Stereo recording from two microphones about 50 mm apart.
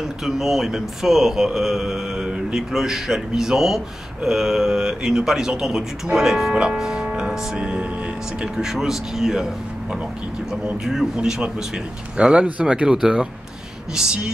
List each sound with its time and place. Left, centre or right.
0.2 s speech: centre; by 7.9 s right
8.5 s speech: centre
10.5 s speech: centre